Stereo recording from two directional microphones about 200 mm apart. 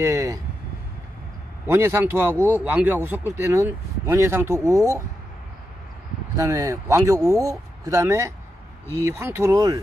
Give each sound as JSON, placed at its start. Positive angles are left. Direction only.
{"t": 0.0, "sound": "vehicle", "side_deg": -15}
{"t": 1.7, "sound": "speech", "side_deg": -10}
{"t": 6.3, "sound": "speech", "side_deg": -15}